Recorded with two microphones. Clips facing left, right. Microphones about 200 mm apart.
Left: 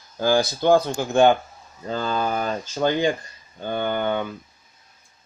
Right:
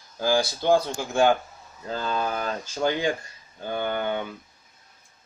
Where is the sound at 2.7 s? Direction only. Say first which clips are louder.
Left 3 dB; 5° right (ahead or behind).